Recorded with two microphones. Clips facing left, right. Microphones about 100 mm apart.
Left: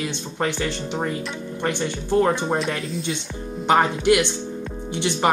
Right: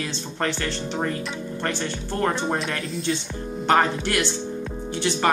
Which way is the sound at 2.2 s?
5° left (ahead or behind).